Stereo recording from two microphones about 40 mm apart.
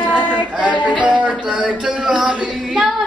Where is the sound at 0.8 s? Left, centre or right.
Right.